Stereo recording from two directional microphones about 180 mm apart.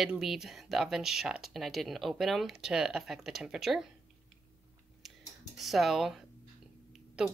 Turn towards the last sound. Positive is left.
turn(degrees=-5)  # may be behind; listen again after turning